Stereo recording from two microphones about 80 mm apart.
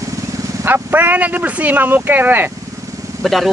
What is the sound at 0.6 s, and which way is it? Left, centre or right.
Speech, right.